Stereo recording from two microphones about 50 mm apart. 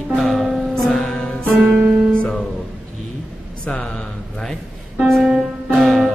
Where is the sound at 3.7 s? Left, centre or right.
Centre.